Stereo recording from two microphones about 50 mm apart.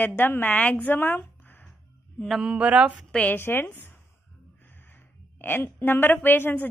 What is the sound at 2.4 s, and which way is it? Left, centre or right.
Speech, right.